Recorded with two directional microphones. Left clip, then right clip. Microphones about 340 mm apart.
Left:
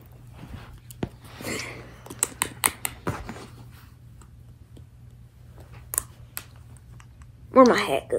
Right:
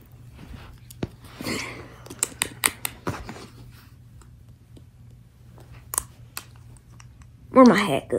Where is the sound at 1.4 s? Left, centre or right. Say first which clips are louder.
Right 2 dB; centre.